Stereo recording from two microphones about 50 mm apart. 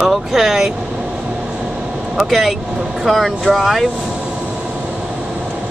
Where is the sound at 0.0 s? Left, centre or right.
Centre.